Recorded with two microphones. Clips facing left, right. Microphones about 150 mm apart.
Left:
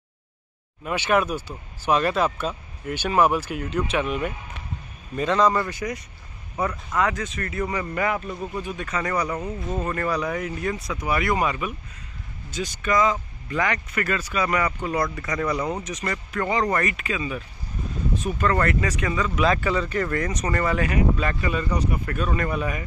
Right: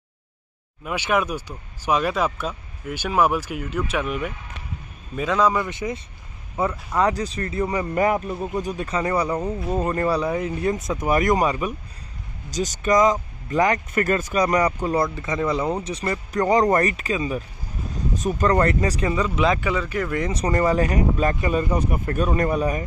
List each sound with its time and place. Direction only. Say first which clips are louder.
0.8 s speech: left 1 dB; 10° right (ahead or behind)
5.1 s a man's voice: even; 5° right (ahead or behind)
5.7 s speech: right 2 dB; 25° right (ahead or behind)
7.9 s speech: right 5 dB; 35° right (ahead or behind)
15.1 s speech: right 2 dB; 25° right (ahead or behind)
19.3 s speech: right 1 dB; 20° right (ahead or behind)
19.7 s speech: even; 5° right (ahead or behind)
20.2 s speech: right 2 dB; 30° right (ahead or behind)
20.6 s speech: right 2 dB; 40° right (ahead or behind)
21.7 s speech: right 3 dB; 25° right (ahead or behind)
22.1 s speech: right 7 dB; 40° right (ahead or behind)